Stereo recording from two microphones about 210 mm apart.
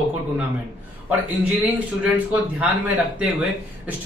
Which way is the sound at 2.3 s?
5° right (ahead or behind).